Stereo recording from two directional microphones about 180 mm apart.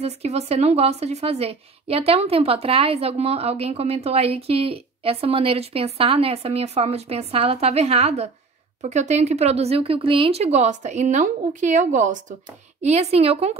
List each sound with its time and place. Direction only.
0.0 s a woman's voice: 35° right (ahead or behind)